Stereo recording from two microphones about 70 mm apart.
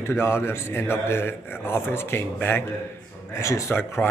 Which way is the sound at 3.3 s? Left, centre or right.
Left.